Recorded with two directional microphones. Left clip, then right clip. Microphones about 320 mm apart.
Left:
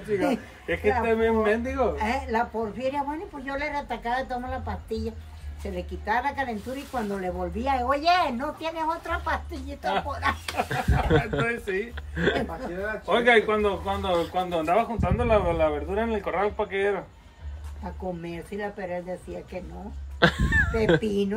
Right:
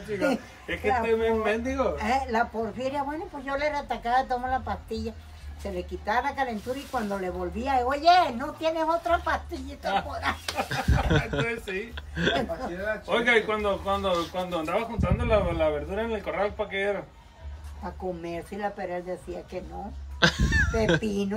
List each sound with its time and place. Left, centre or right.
0.1 s speech: centre
5.8 s speech: centre
18.2 s speech: centre
20.2 s speech: centre